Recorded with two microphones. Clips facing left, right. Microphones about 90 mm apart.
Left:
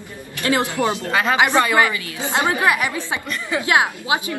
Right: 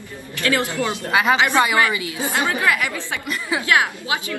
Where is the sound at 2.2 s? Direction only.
25° left (ahead or behind).